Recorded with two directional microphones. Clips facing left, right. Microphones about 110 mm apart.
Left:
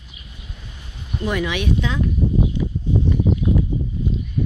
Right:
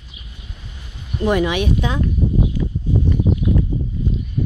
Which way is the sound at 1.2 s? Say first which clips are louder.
Right 5 dB; 30° right (ahead or behind).